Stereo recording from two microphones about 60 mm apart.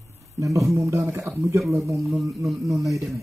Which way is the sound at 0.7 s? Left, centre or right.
Right.